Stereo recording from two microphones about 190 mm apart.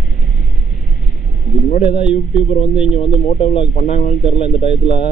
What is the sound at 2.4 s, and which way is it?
Speech, 30° left (ahead or behind).